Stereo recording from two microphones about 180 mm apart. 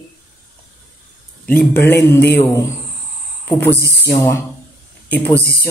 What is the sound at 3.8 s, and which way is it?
Speech, 60° left (ahead or behind).